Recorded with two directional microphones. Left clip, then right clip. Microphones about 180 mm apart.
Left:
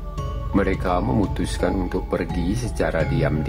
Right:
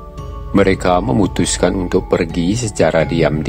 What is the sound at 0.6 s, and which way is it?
Speech, 30° right (ahead or behind).